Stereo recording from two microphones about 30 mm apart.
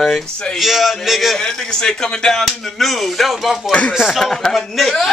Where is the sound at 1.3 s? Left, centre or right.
Centre.